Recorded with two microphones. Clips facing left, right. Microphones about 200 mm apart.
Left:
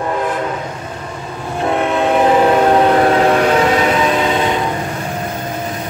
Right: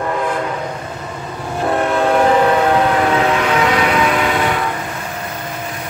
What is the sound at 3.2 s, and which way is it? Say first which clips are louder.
Vehicle: left 3 dB; 40° left (ahead or behind).